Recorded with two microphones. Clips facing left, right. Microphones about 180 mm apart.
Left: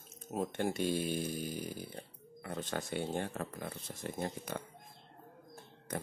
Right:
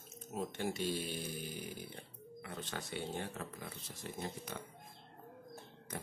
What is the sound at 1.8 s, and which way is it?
Speech, 40° left (ahead or behind).